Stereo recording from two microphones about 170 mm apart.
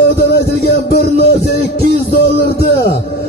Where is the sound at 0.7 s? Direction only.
65° left (ahead or behind).